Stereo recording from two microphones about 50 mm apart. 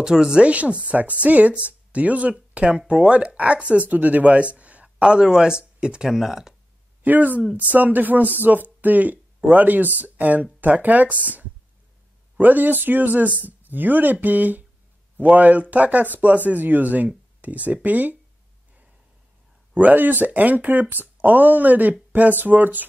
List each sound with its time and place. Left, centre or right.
0.0 s speech: centre
7.0 s speech: right
12.4 s speech: right
19.7 s speech: right